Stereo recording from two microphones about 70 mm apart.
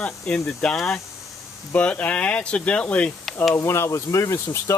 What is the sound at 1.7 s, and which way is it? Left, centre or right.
Speech, centre.